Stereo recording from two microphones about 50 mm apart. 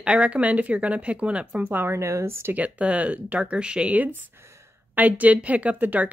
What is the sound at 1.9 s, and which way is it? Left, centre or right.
Speech, right.